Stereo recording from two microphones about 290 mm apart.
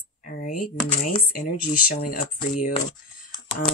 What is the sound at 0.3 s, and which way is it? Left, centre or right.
Speech, left.